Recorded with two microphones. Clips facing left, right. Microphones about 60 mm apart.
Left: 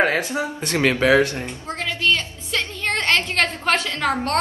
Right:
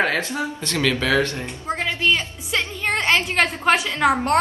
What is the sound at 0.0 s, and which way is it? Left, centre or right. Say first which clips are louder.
Speech: left 2 dB; left.